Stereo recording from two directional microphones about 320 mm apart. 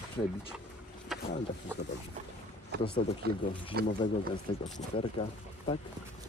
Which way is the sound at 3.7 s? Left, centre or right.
Right.